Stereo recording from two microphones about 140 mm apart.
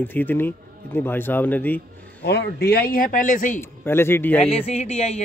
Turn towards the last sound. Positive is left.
turn(degrees=50)  # may be behind; listen again after turning